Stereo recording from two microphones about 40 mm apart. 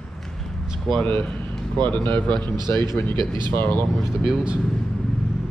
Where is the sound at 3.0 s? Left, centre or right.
Left.